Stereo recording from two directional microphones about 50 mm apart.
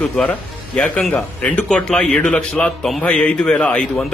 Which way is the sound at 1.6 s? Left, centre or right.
Centre.